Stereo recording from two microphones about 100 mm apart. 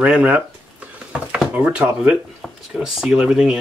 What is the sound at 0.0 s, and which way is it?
Speech, 15° right (ahead or behind).